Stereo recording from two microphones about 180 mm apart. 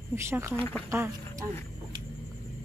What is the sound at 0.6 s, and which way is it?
Speech, 10° left (ahead or behind).